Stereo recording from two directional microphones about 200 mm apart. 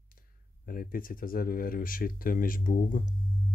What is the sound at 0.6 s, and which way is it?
Speech, 45° left (ahead or behind).